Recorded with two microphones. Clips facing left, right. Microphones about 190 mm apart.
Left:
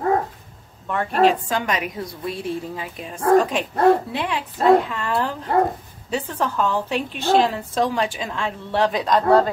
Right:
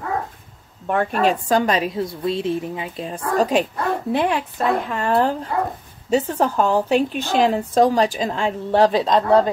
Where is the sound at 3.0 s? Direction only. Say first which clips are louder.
Left 4 dB; 30° right (ahead or behind).